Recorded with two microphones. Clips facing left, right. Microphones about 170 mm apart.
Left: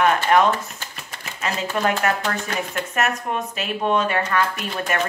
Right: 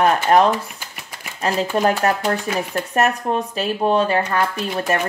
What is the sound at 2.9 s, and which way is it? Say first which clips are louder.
Speech: right 5 dB; 35° right (ahead or behind).